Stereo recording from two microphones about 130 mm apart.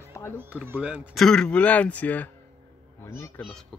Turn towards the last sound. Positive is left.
turn(degrees=5)  # may be behind; listen again after turning